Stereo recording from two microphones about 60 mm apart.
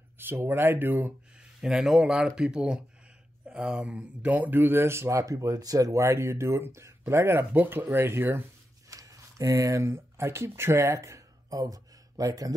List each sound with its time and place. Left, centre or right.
0.2 s speech: right
1.6 s a man's voice: centre; by 5.2 s right
5.2 s speech: right
6.0 s speech: right
7.5 s speech: right
8.8 s speech: right